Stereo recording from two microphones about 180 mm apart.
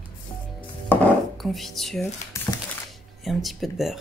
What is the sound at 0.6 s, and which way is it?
Dishes, 5° left (ahead or behind).